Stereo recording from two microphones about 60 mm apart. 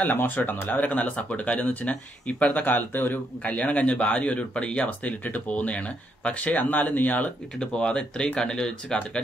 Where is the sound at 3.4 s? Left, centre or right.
Left.